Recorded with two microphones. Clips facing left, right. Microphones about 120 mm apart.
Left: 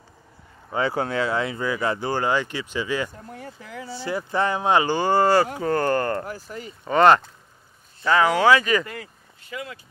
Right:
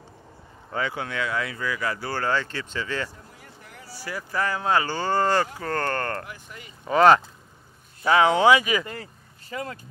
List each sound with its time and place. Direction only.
0.7 s speech: 35° left (ahead or behind); by 3.1 s 10° left (ahead or behind)
3.3 s a sound: 90° left
3.9 s speech: 25° left (ahead or behind)
6.2 s speech: 35° left (ahead or behind)
6.8 s speech: centre (ahead or behind)
8.0 s speech: 20° right (ahead or behind)
8.8 s speech: 35° right (ahead or behind)